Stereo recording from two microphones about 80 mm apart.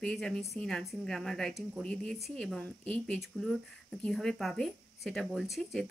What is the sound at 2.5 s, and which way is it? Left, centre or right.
Speech, centre.